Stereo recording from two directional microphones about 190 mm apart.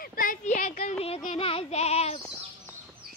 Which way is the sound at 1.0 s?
35° left (ahead or behind).